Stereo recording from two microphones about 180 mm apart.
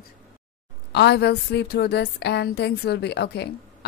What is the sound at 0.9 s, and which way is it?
A woman's voice, 70° left (ahead or behind).